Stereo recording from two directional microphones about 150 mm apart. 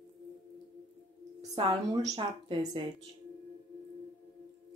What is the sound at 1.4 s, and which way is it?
A woman's voice, 25° right (ahead or behind).